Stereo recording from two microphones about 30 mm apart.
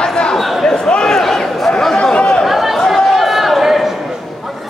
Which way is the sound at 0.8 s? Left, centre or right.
Left.